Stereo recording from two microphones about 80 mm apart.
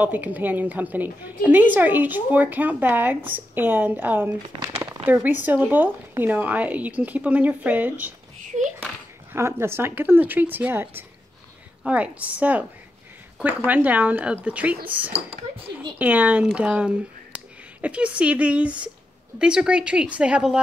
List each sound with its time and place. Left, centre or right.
0.0 s a woman's voice: right
9.3 s a woman's voice: right; by 20.6 s centre